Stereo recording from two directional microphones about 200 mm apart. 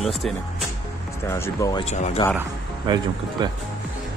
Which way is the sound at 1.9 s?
35° left (ahead or behind).